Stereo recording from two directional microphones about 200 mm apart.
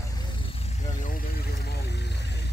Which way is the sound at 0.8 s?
40° left (ahead or behind).